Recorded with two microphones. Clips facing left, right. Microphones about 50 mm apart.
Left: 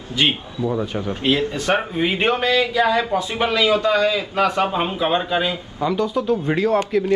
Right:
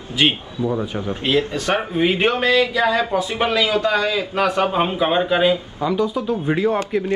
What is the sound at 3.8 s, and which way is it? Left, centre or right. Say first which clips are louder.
A man's voice: left 1 dB; centre.